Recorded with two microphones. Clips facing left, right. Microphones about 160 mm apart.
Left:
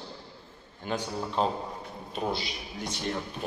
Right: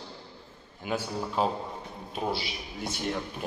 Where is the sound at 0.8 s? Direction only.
5° right (ahead or behind).